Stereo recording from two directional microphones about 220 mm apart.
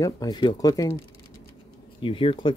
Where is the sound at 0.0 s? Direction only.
15° left (ahead or behind).